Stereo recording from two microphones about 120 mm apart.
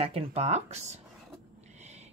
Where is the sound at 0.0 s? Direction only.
55° right (ahead or behind).